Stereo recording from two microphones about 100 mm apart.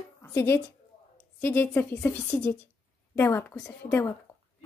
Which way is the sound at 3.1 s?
25° left (ahead or behind).